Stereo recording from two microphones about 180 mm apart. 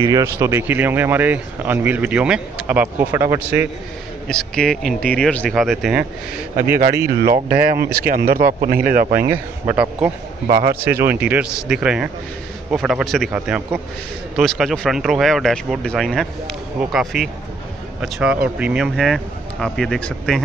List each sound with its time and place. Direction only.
0.0 s speech: 20° right (ahead or behind)
4.3 s speech: 5° left (ahead or behind)
6.5 s a man's voice: 55° right (ahead or behind)
9.3 s speech: 10° right (ahead or behind)